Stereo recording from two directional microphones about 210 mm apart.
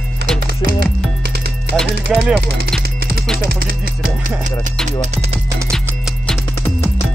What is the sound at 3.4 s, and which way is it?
Speech, 45° right (ahead or behind).